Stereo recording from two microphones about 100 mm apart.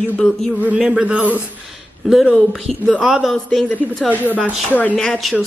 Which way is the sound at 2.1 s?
Centre (ahead or behind).